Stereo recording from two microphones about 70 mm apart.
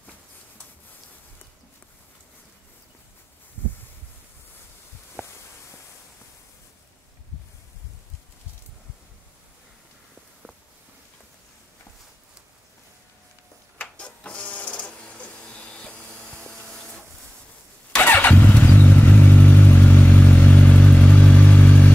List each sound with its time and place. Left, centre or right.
13.7 s printer: centre
17.9 s vehicle: left